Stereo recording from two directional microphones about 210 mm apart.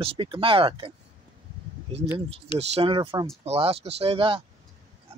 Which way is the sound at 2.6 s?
25° right (ahead or behind).